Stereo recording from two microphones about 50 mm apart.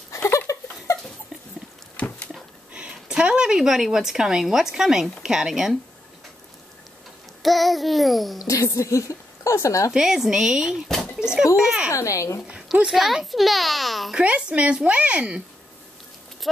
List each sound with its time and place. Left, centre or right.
0.1 s laughter: left
0.9 s a sound: left
2.0 s dog: left
2.7 s a woman's voice: centre
7.4 s a child's voice: centre
8.7 s a woman's voice: left
9.9 s a woman's voice: centre
11.9 s a woman's voice: left
12.8 s a child's voice: centre
14.1 s a woman's voice: right